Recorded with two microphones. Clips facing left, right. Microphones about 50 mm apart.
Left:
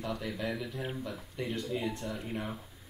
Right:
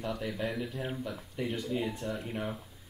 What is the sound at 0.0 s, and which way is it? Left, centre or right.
Speech, centre.